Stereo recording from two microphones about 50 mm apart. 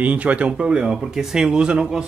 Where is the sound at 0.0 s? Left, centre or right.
Right.